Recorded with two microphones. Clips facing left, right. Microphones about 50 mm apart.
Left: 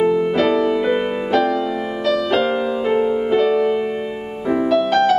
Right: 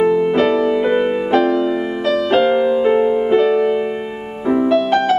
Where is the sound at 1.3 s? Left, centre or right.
Right.